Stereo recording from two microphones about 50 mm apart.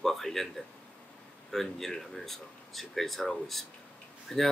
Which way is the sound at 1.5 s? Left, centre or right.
Centre.